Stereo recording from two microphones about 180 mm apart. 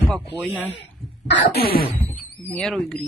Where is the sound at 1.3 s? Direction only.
75° left (ahead or behind); by 1.8 s 60° left (ahead or behind).